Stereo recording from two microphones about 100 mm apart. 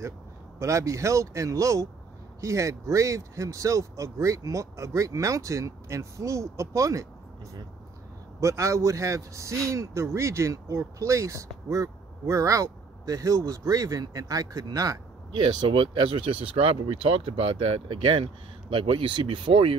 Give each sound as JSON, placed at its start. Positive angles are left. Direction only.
{"t": 0.6, "sound": "speech", "side_deg": -30}
{"t": 8.4, "sound": "speech", "side_deg": -30}
{"t": 15.4, "sound": "speech", "side_deg": -60}